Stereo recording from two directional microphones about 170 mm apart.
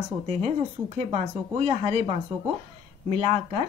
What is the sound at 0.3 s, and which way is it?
Speech, 40° right (ahead or behind).